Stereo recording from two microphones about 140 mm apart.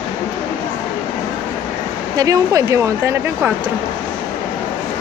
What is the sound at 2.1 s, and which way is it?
Speech, 25° right (ahead or behind).